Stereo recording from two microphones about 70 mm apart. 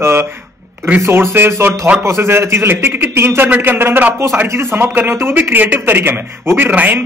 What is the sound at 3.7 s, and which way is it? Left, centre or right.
A man's voice, right.